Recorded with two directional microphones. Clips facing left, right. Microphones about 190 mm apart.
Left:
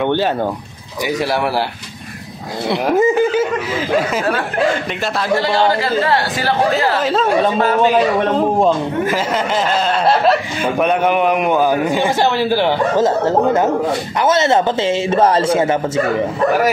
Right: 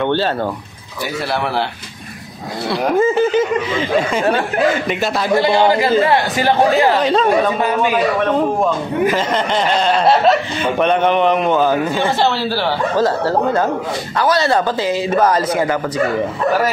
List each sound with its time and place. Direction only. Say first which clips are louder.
0.0 s speech: left 1 dB; 15° left (ahead or behind)
2.7 s speech: left 1 dB; 20° left (ahead or behind)
5.3 s a man's voice: right 2 dB; 15° right (ahead or behind)
7.0 s speech: right 2 dB; 5° left (ahead or behind)
9.8 s speech: right 2 dB; centre (ahead or behind); by 15.7 s 25° left (ahead or behind)